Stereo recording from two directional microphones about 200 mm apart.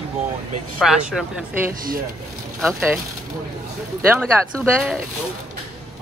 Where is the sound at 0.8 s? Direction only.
5° right (ahead or behind).